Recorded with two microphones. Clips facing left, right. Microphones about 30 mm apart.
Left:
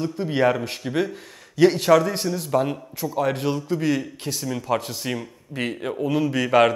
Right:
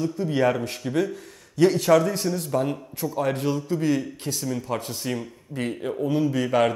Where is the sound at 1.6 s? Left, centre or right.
Left.